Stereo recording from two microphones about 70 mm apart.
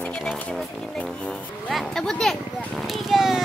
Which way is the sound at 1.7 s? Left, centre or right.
Centre.